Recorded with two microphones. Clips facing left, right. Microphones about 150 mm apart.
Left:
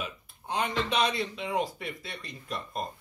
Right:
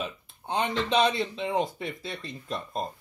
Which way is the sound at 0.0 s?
25° right (ahead or behind).